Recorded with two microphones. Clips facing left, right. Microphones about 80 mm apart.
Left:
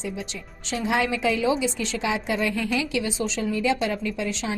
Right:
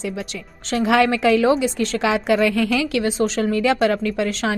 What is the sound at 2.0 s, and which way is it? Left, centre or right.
Speech, right.